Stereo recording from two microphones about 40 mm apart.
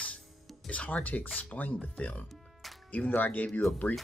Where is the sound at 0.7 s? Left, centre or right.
Left.